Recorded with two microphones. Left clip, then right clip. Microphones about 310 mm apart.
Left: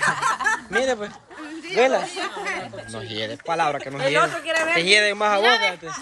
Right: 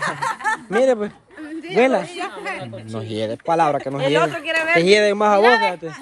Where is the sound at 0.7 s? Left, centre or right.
Centre.